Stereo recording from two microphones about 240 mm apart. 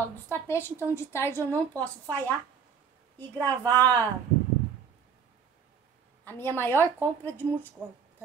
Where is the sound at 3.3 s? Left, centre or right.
Centre.